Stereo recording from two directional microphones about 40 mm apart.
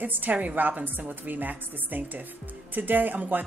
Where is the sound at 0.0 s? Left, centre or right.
Right.